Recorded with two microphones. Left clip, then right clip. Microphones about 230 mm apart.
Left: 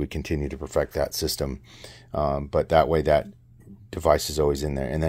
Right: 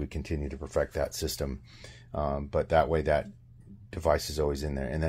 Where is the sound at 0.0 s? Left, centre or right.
Left.